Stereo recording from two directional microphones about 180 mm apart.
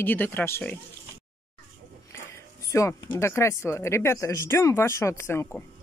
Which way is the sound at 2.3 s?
15° left (ahead or behind).